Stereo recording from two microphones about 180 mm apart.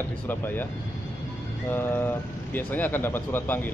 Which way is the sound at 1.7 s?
10° left (ahead or behind).